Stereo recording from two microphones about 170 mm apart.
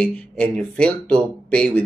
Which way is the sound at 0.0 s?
5° left (ahead or behind).